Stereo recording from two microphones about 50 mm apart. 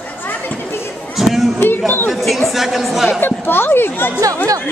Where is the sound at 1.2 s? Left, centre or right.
Centre.